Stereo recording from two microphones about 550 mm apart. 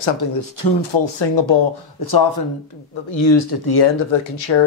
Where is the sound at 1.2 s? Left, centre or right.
Left.